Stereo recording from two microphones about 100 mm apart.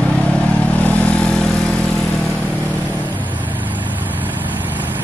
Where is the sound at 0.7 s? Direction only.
15° left (ahead or behind).